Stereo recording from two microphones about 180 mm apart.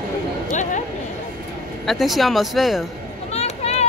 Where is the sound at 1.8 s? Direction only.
Centre (ahead or behind).